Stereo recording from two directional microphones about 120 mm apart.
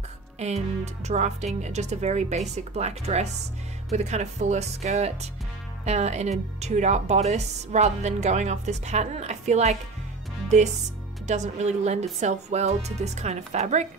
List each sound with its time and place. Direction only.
0.4 s speech: 65° right (ahead or behind)
11.2 s speech: 75° right (ahead or behind)